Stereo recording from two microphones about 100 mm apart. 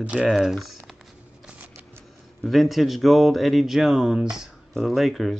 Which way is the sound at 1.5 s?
15° right (ahead or behind).